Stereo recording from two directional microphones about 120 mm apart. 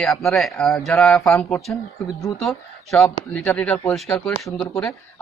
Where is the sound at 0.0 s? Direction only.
Centre (ahead or behind).